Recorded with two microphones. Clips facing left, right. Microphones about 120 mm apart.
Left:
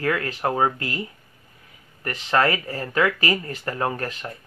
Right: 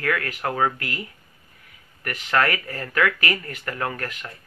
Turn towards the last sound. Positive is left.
turn(degrees=30)  # may be behind; listen again after turning